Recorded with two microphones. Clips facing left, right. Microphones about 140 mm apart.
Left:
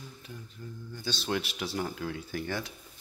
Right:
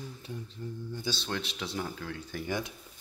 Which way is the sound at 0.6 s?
30° right (ahead or behind).